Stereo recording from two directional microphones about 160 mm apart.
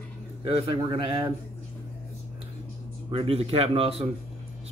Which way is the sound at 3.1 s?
35° right (ahead or behind).